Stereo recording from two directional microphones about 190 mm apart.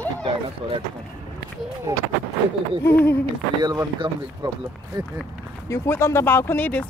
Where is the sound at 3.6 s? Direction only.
20° right (ahead or behind).